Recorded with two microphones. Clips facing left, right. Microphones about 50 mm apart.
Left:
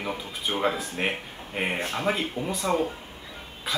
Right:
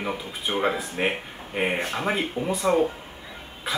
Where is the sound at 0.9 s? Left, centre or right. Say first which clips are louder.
Right 3 dB; centre.